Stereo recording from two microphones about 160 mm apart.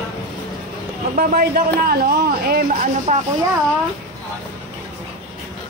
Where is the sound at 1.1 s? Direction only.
65° right (ahead or behind).